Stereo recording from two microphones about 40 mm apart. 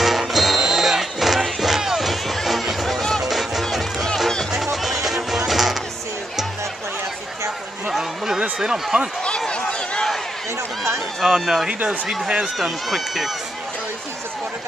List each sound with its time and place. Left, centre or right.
0.0 s music: centre
8.5 s speech: centre
9.5 s a sound: left
11.2 s speech: centre
12.5 s speech: centre